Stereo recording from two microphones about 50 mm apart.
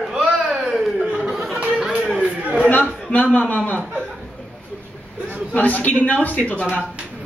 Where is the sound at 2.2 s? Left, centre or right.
Right.